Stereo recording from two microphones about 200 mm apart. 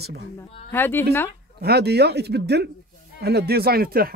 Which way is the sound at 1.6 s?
55° right (ahead or behind).